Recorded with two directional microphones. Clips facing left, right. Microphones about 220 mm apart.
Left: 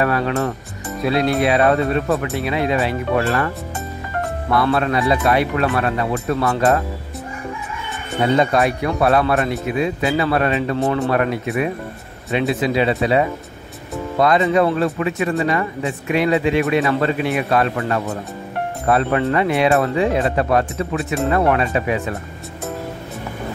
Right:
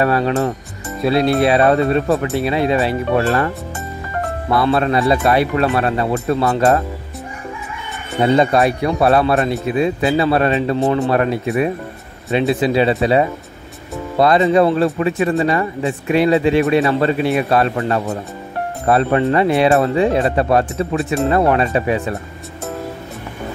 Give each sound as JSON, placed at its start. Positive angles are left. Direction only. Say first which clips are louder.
{"t": 0.0, "sound": "speech", "louder": "right 3 dB", "side_deg": -30}
{"t": 4.6, "sound": "speech", "louder": "right 2 dB", "side_deg": -30}
{"t": 8.4, "sound": "speech", "louder": "right 3 dB", "side_deg": -30}
{"t": 14.2, "sound": "speech", "louder": "right 3 dB", "side_deg": -35}